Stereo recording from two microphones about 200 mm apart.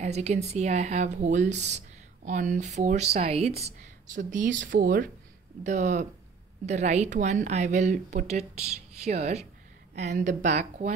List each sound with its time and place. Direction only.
0.0 s a woman's voice: 35° right (ahead or behind)